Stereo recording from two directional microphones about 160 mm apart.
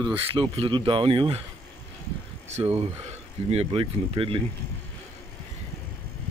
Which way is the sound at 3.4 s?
40° right (ahead or behind).